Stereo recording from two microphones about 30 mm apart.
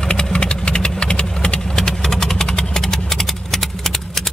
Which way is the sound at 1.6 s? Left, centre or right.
Centre.